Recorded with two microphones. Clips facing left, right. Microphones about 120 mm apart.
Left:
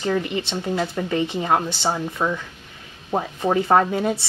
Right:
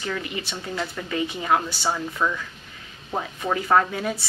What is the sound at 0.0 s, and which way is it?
Speech, 30° left (ahead or behind).